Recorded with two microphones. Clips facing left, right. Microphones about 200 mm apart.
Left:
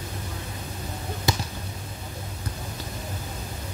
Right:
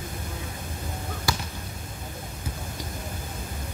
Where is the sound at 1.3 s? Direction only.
20° left (ahead or behind).